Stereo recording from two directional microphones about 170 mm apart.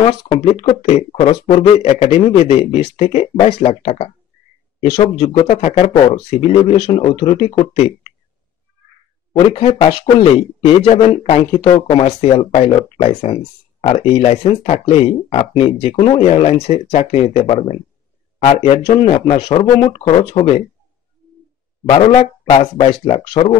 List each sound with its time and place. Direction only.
0.0 s speech: 35° left (ahead or behind)
7.2 s speech: 35° left (ahead or behind)
9.3 s speech: 35° left (ahead or behind)
21.8 s speech: 35° left (ahead or behind)